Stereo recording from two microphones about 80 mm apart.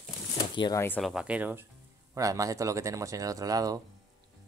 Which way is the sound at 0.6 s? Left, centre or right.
Left.